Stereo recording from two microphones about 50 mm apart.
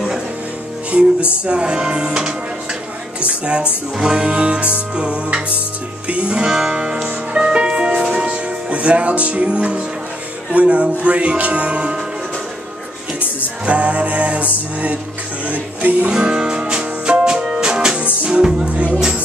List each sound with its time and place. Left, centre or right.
1.4 s speech: centre
3.2 s music: right
13.7 s music: right
16.1 s music: centre